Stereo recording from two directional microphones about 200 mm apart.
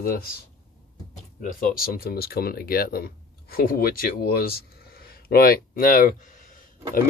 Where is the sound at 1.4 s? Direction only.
45° left (ahead or behind).